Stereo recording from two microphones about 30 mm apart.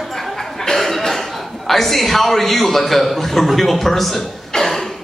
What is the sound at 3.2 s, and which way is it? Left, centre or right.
Chuckle, centre.